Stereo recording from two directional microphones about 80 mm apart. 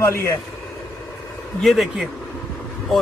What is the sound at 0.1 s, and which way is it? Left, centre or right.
Speech, left.